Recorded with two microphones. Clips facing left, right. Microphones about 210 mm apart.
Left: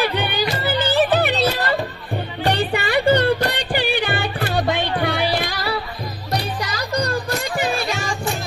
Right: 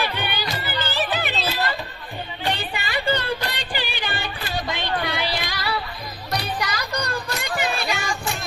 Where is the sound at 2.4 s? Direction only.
60° left (ahead or behind).